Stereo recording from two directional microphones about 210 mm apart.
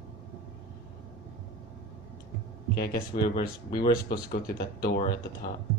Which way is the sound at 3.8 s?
45° left (ahead or behind).